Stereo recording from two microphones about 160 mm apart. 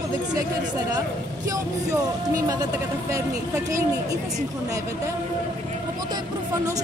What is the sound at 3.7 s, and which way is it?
Speech, 20° right (ahead or behind).